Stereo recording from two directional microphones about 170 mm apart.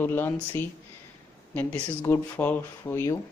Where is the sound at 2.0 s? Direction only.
15° left (ahead or behind).